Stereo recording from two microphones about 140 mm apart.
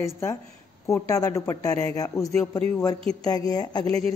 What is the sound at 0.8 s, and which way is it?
Speech, 20° left (ahead or behind).